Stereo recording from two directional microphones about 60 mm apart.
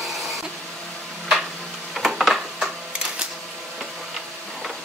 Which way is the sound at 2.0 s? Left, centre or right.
Centre.